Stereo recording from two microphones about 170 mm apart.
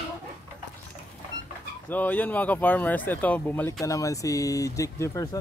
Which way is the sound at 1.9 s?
10° left (ahead or behind).